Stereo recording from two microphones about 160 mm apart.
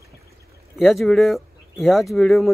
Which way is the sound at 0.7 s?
Centre (ahead or behind).